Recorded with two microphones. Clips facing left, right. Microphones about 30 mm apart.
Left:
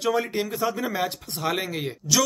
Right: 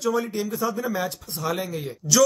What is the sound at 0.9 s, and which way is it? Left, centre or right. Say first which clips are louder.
Speech: left 1 dB; left.